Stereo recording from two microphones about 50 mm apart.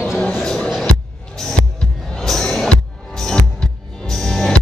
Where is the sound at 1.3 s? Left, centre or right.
Centre.